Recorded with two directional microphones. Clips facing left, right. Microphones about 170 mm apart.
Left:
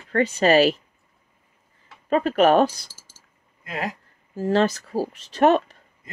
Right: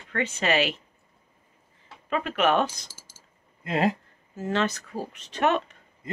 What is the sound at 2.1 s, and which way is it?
Speech, 40° left (ahead or behind).